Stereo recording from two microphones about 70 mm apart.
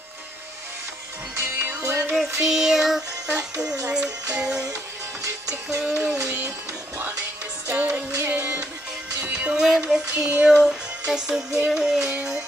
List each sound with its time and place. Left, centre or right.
1.4 s music: right
2.4 s child singing: centre
3.9 s music: centre
5.8 s music: centre
7.7 s music: right
9.2 s music: centre
9.7 s music: centre
10.0 s music: centre